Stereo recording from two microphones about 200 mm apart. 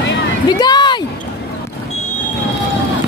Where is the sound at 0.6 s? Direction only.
20° left (ahead or behind).